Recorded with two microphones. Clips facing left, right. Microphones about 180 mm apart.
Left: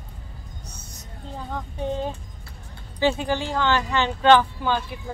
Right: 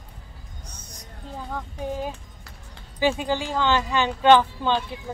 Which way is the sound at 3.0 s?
15° right (ahead or behind).